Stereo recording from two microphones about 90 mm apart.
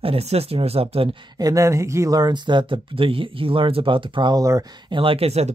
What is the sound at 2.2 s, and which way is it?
Speech, 60° right (ahead or behind).